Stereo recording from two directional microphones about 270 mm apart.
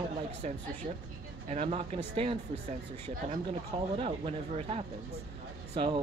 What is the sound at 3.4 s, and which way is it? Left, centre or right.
A woman's voice, centre.